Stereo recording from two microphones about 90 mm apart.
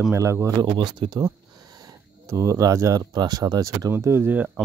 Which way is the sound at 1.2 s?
45° right (ahead or behind).